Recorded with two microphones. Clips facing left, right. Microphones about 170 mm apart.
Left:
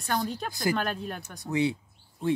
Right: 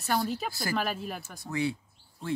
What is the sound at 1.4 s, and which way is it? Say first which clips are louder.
Speech: left 4 dB; 20° left (ahead or behind).